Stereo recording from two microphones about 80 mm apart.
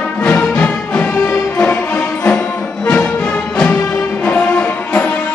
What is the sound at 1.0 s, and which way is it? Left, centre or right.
Music, left.